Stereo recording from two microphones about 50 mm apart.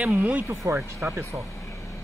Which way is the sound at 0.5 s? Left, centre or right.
Right.